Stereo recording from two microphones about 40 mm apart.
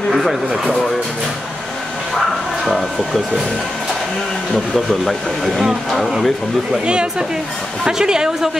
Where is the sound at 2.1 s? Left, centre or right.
Centre.